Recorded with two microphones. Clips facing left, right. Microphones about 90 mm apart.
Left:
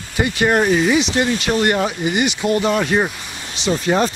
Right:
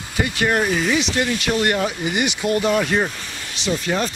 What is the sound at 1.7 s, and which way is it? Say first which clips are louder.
Speech: left 3 dB; 15° left (ahead or behind).